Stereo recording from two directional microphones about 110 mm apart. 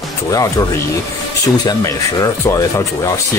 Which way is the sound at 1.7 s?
30° left (ahead or behind).